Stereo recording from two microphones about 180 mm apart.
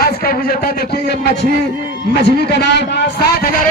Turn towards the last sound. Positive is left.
turn(degrees=60)  # may be behind; listen again after turning